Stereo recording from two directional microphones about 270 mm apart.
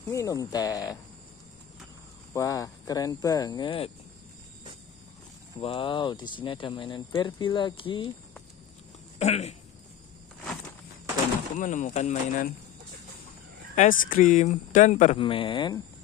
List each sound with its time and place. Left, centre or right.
0.1 s speech: centre
2.3 s speech: centre
5.6 s speech: centre
9.2 s speech: left
11.5 s speech: left
13.7 s speech: left